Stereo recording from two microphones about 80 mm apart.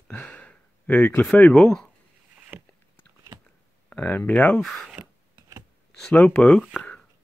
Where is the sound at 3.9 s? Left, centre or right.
Centre.